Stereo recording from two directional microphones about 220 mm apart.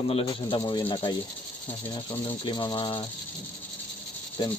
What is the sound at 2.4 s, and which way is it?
Speech, 20° left (ahead or behind).